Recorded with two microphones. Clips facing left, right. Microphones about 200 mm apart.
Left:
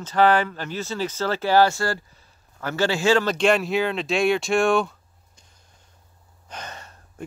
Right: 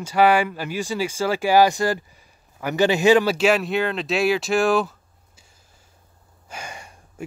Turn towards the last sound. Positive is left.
turn(degrees=-10)  # may be behind; listen again after turning